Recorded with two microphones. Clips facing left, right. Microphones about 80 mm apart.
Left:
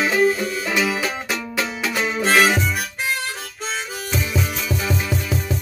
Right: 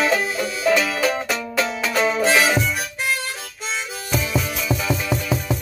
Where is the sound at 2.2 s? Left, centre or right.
Left.